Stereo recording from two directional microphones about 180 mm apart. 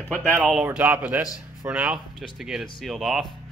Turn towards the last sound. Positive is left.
turn(degrees=0)  # may be behind; listen again after turning